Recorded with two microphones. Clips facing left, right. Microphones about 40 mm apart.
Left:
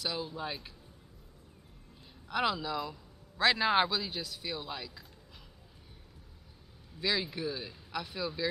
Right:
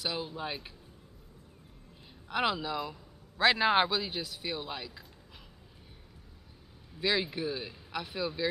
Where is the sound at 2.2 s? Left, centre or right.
Centre.